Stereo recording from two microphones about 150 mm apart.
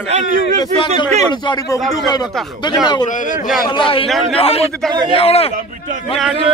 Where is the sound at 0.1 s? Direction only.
55° right (ahead or behind).